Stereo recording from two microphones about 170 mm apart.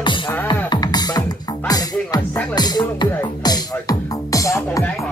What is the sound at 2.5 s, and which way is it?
Speech, 25° left (ahead or behind).